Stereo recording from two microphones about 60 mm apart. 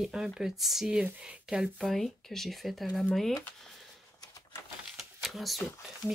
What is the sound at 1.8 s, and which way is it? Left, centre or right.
Speech, centre.